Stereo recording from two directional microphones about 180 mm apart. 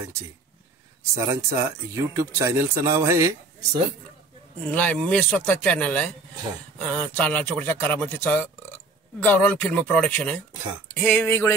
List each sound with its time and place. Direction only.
1.1 s speech: 15° right (ahead or behind)
4.6 s speech: 10° left (ahead or behind)